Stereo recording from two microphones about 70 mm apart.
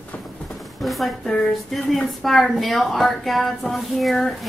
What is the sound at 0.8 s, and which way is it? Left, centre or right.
A woman's voice, centre.